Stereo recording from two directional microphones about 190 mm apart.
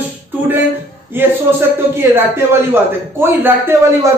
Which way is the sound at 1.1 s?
10° right (ahead or behind).